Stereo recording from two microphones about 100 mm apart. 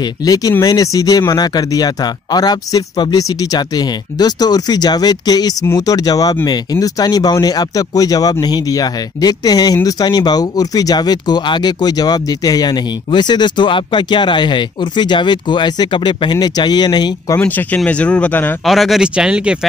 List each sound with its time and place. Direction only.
0.2 s speech: 40° left (ahead or behind)
17.7 s speech: 10° left (ahead or behind)
18.7 s speech: centre (ahead or behind)